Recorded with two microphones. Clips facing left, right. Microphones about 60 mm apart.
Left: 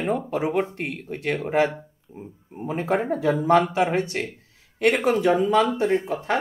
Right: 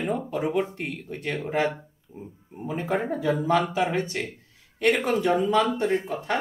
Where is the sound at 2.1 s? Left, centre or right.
Left.